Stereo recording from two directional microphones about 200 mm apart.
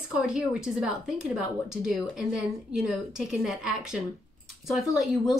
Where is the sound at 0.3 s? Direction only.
5° right (ahead or behind).